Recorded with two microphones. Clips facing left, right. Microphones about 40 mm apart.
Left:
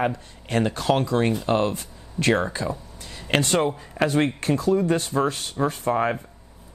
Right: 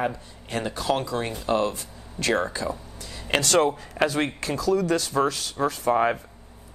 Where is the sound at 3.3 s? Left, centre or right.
Left.